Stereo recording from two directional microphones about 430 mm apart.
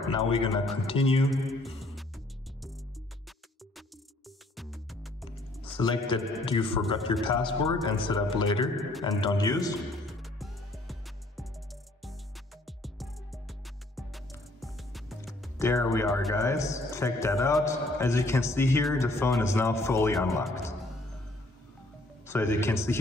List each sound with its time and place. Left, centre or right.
0.1 s a man's voice: centre
1.3 s speech: centre
1.8 s music: centre
4.6 s music: centre
5.3 s a man's voice: centre
9.2 s music: centre
12.6 s music: centre
22.2 s a man's voice: centre